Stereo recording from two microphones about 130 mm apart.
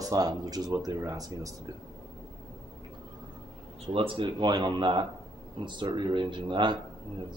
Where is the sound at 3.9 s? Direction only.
45° right (ahead or behind).